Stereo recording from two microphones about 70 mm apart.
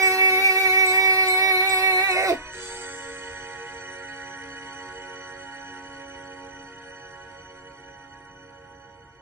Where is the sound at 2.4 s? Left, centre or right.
Right.